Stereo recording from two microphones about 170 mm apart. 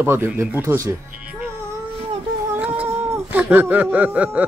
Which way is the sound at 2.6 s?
10° right (ahead or behind).